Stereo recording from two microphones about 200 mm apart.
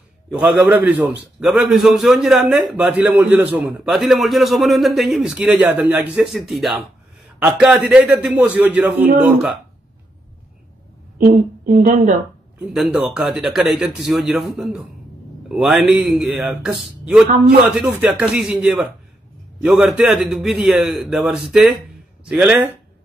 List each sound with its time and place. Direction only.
0.3 s a man's voice: 10° right (ahead or behind)
11.1 s a woman's voice: 40° right (ahead or behind)
12.6 s a man's voice: 5° right (ahead or behind)